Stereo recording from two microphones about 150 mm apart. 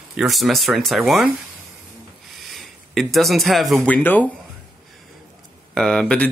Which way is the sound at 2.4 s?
Centre (ahead or behind).